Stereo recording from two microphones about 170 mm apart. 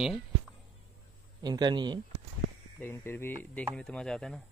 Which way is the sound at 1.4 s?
25° right (ahead or behind).